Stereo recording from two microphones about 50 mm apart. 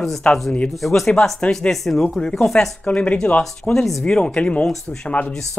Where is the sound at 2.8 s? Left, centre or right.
Left.